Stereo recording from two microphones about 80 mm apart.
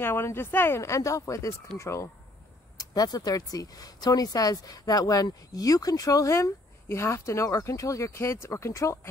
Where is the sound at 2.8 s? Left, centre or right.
Left.